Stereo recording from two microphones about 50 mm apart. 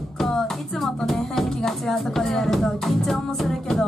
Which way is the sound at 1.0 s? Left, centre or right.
Centre.